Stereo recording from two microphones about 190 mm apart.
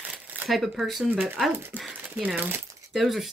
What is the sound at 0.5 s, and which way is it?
Speech, centre (ahead or behind).